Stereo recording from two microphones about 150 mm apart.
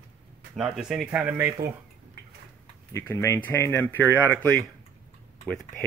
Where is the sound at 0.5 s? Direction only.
Centre (ahead or behind).